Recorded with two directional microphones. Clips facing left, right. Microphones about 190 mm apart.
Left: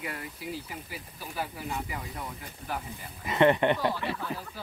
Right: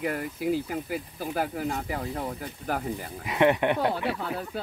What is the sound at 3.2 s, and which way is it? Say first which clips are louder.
Speech: even; 10° right (ahead or behind).